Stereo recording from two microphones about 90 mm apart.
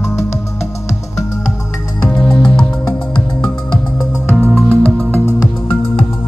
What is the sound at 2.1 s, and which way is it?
Music, 15° left (ahead or behind).